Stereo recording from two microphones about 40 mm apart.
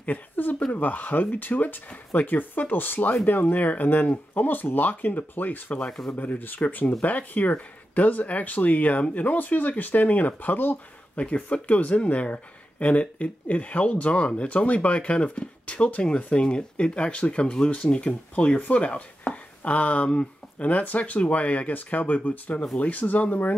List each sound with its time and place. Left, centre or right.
0.0 s speech: left
11.1 s speech: left